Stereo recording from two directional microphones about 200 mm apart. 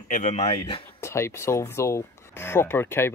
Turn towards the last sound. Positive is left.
turn(degrees=10)  # may be behind; listen again after turning